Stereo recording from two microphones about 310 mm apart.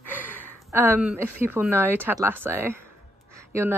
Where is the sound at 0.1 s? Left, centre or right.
Centre.